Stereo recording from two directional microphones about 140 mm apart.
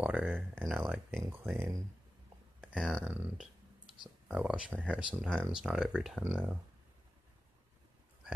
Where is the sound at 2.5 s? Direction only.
5° right (ahead or behind).